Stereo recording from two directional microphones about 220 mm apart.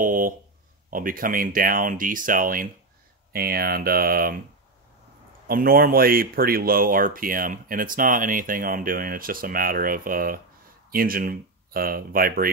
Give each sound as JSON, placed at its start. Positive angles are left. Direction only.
{"t": 0.0, "sound": "a sound", "side_deg": -40}
{"t": 0.8, "sound": "speech", "side_deg": -40}
{"t": 5.5, "sound": "speech", "side_deg": -40}